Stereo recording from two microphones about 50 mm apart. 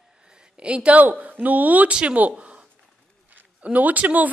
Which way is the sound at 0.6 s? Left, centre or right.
Right.